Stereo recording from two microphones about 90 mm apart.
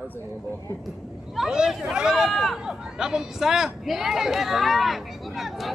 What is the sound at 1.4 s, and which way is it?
Speech, 5° right (ahead or behind).